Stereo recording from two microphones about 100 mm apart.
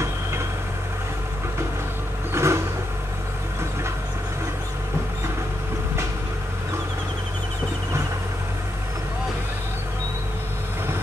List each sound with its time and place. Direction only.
2.3 s vehicle: 25° right (ahead or behind)